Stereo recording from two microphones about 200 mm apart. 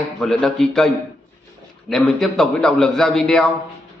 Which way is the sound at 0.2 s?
Centre (ahead or behind).